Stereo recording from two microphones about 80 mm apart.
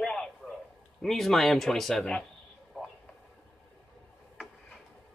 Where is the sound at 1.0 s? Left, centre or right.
Centre.